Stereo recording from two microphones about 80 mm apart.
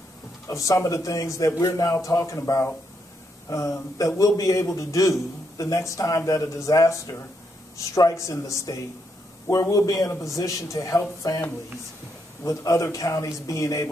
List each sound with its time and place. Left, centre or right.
0.5 s speech: left
11.2 s speech: left
12.4 s speech: left